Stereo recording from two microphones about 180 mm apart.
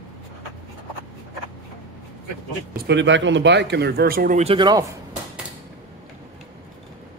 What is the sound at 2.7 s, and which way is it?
Speech, 70° right (ahead or behind).